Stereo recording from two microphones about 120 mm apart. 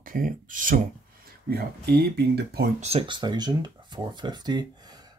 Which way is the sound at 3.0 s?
40° right (ahead or behind).